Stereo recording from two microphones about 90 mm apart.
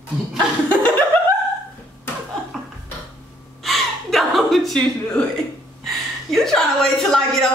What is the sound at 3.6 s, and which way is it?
Gasp, centre (ahead or behind).